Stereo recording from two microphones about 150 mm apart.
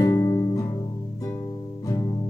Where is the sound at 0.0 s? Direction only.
20° left (ahead or behind).